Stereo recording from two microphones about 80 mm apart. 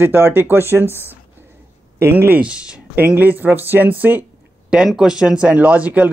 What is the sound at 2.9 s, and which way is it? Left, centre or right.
Speech, right.